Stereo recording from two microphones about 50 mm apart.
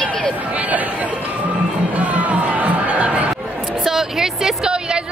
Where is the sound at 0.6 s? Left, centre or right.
Right.